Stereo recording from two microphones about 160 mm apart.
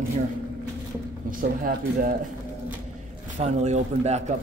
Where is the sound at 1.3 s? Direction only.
60° right (ahead or behind).